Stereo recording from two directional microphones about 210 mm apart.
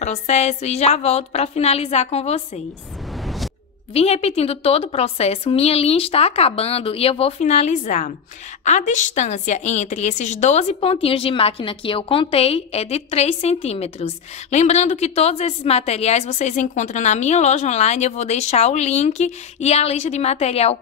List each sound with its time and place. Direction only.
0.0 s a woman's voice: 30° left (ahead or behind)
3.9 s a woman's voice: 30° left (ahead or behind)